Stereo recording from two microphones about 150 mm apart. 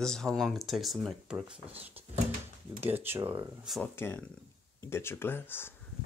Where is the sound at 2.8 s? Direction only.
15° right (ahead or behind).